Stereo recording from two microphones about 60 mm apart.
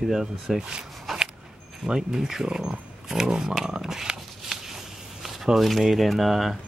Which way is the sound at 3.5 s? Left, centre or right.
Centre.